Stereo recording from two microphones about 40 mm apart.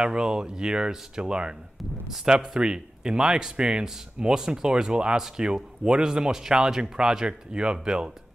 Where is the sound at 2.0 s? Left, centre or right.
Centre.